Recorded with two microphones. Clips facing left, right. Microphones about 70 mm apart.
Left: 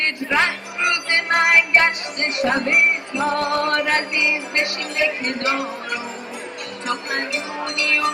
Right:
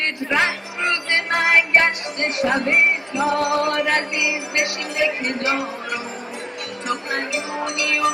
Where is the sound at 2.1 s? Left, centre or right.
Centre.